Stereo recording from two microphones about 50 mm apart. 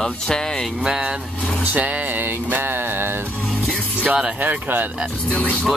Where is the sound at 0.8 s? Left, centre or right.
Centre.